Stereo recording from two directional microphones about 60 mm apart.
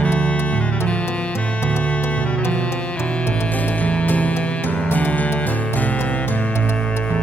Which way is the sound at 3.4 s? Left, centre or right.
Left.